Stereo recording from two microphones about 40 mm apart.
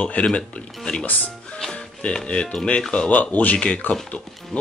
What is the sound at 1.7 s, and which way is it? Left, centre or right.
Music, left.